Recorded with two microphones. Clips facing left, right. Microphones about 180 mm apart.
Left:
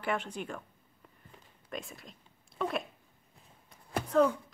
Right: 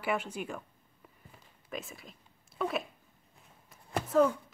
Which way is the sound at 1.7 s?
Centre (ahead or behind).